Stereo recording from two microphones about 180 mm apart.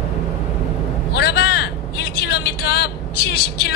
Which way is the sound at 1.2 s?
65° left (ahead or behind).